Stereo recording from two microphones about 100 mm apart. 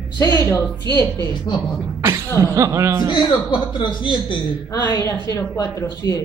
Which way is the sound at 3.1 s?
50° left (ahead or behind).